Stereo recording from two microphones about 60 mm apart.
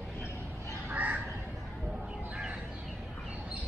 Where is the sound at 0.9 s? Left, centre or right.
Right.